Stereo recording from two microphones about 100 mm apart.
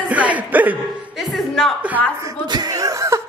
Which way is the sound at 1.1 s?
Centre (ahead or behind).